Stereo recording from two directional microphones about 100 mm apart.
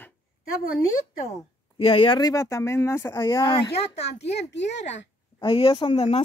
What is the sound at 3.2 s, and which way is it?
Speech, 55° left (ahead or behind).